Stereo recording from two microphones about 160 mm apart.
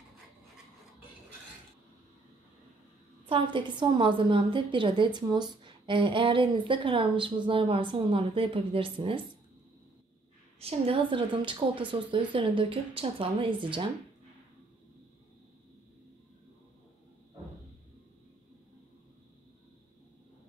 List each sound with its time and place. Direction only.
3.3 s a woman's voice: 30° right (ahead or behind)
10.6 s a woman's voice: 35° right (ahead or behind)